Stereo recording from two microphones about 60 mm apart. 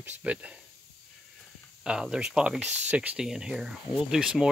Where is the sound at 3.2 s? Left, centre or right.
Centre.